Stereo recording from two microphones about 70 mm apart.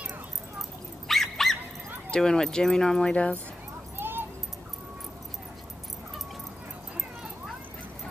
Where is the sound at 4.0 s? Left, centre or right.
Right.